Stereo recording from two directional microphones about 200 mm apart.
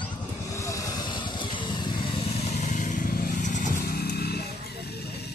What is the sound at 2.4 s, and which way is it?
Vehicle, 35° left (ahead or behind).